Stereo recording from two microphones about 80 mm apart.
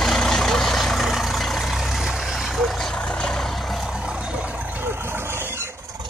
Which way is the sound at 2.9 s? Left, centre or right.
Centre.